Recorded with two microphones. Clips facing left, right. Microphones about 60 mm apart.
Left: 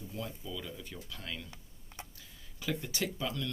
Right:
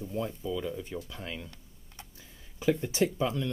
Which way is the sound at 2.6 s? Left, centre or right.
Right.